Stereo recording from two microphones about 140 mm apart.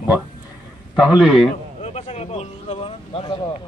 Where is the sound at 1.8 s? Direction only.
50° left (ahead or behind).